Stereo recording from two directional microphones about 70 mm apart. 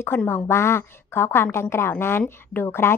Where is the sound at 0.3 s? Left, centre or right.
Left.